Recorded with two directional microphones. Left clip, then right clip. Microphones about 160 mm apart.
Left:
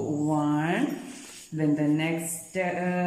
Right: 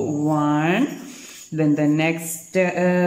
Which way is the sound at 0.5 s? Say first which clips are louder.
Right 7 dB; 25° right (ahead or behind).